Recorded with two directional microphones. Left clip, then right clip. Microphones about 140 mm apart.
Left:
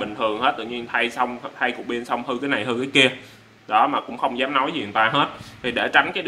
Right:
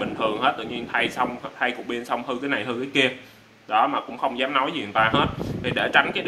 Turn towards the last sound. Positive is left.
turn(degrees=-5)  # may be behind; listen again after turning